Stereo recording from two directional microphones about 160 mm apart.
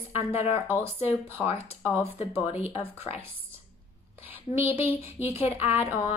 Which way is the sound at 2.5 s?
40° left (ahead or behind).